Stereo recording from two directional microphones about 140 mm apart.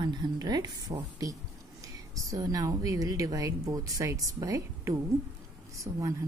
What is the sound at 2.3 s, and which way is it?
A woman's voice, 25° right (ahead or behind).